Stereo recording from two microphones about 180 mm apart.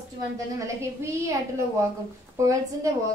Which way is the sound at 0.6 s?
15° right (ahead or behind).